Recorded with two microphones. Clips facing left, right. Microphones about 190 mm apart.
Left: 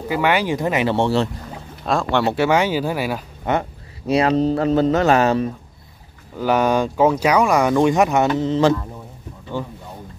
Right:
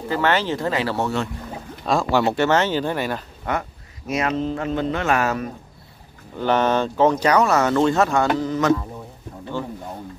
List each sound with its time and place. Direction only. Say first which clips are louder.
0.1 s speech: left 2 dB; 10° left (ahead or behind); by 1.3 s 30° left (ahead or behind)
1.9 s speech: even; 5° right (ahead or behind)
3.5 s speech: left 5 dB; 20° left (ahead or behind)
4.1 s speech: left 6 dB; 35° left (ahead or behind)
6.3 s speech: left 2 dB; 10° left (ahead or behind); by 8.7 s 30° left (ahead or behind)